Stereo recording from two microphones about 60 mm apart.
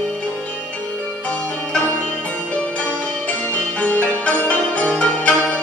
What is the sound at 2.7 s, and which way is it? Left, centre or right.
Music, left.